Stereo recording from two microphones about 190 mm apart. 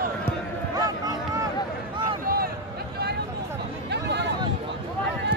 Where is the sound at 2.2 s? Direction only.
55° right (ahead or behind).